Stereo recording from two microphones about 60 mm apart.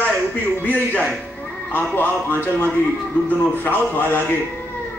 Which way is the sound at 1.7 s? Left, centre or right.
Left.